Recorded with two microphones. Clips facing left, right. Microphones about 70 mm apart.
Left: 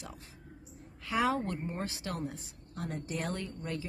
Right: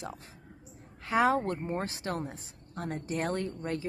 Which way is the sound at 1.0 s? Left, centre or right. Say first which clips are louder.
Right 4 dB; right.